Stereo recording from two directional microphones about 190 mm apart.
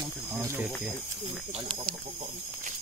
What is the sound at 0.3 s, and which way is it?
Speech, 10° right (ahead or behind).